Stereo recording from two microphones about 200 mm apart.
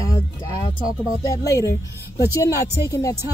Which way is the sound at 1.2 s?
15° left (ahead or behind).